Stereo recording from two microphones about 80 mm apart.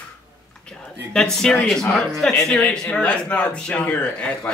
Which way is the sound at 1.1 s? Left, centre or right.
Centre.